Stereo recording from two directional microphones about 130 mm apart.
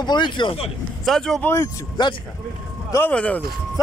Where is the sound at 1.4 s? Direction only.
20° left (ahead or behind).